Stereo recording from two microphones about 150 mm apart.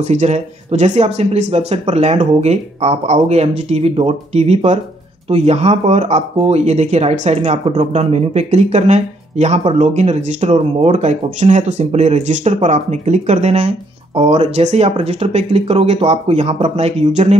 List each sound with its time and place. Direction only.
0.0 s speech: 50° right (ahead or behind)